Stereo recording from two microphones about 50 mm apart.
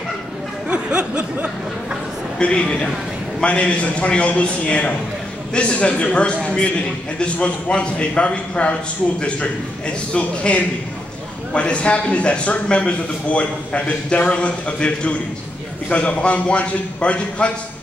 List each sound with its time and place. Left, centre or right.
0.7 s speech: right
2.3 s a man's voice: centre